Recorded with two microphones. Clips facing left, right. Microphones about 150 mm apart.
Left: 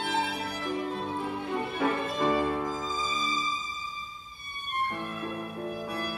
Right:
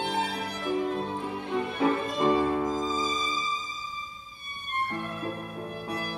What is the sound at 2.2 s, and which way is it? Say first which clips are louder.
Music: right 3 dB; 20° right (ahead or behind).